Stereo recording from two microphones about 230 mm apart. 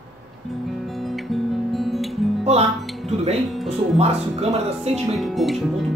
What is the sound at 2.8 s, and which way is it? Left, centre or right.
Music, centre.